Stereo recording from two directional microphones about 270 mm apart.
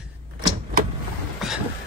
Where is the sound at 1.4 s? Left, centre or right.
Centre.